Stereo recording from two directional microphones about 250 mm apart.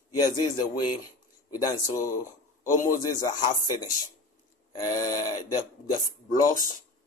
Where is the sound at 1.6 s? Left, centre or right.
Centre.